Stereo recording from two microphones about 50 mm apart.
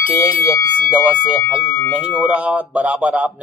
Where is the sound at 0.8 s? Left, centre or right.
Right.